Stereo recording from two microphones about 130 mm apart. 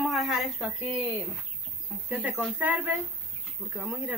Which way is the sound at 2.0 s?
15° right (ahead or behind).